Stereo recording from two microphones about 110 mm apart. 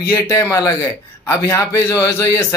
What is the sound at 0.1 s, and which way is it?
A man's voice, 30° left (ahead or behind).